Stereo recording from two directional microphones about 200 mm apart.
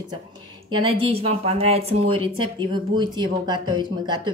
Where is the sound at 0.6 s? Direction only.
25° right (ahead or behind).